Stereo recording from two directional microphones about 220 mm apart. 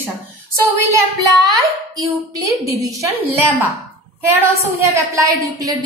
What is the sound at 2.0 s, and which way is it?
A woman's voice, 15° right (ahead or behind).